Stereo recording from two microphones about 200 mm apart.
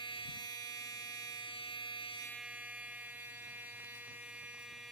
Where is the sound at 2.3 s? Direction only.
5° right (ahead or behind).